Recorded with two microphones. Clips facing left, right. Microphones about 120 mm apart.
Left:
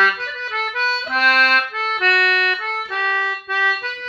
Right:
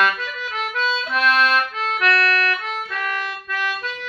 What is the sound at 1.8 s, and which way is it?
Music, 30° left (ahead or behind).